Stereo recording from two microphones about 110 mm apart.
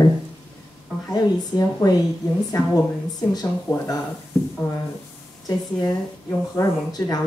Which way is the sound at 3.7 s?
20° left (ahead or behind).